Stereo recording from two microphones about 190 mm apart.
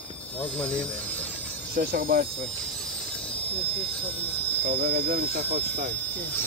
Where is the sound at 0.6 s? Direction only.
5° left (ahead or behind).